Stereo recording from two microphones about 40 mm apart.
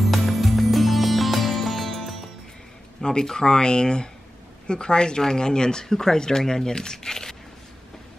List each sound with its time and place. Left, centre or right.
0.0 s music: centre
3.0 s speech: centre